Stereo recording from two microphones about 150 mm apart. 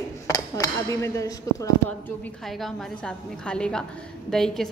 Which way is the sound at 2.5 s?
Centre (ahead or behind).